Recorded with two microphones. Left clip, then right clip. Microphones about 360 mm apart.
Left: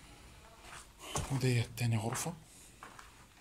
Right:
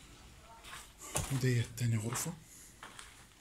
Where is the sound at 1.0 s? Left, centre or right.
Centre.